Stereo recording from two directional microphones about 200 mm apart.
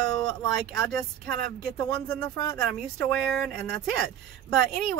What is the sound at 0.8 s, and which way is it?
Speech, centre (ahead or behind).